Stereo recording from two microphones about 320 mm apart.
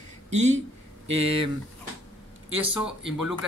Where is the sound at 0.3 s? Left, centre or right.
Right.